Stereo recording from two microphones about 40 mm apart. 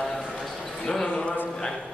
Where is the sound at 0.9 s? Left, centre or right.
Left.